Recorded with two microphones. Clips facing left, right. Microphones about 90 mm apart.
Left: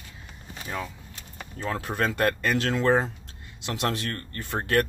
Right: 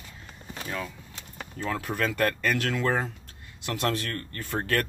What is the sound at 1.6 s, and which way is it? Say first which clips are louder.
Speech: left 1 dB; 35° left (ahead or behind).